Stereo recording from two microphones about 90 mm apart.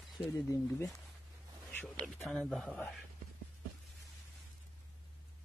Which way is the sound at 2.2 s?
Centre (ahead or behind).